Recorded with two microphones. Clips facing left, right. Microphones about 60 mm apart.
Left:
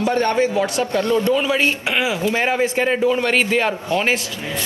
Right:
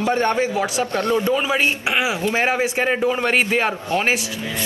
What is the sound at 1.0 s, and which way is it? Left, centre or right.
Speech, right.